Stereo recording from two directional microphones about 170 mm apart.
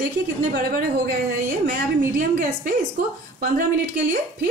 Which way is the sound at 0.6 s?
60° right (ahead or behind).